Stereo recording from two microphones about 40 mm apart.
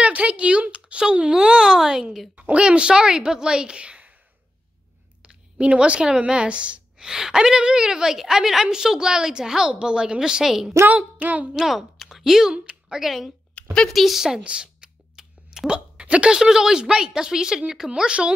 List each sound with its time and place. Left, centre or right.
0.0 s speech: right
1.7 s speech: centre
2.3 s a sound: right
2.6 s a woman's voice: right
5.2 s speech: right
7.1 s a woman's voice: centre
10.9 s a sound: right
11.5 s speech: centre
14.4 s a sound: right
16.3 s speech: centre